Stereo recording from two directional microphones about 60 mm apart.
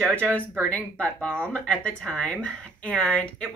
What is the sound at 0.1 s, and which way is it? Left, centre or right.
Speech, centre.